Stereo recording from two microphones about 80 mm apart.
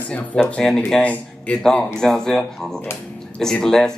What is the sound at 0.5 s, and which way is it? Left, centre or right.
A man's voice, centre.